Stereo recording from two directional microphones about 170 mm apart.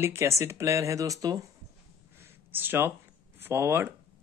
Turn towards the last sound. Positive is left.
turn(degrees=-15)  # may be behind; listen again after turning